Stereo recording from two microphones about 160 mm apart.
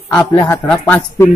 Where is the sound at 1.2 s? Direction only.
55° left (ahead or behind).